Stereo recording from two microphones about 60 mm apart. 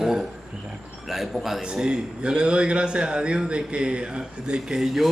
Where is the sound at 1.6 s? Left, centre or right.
Centre.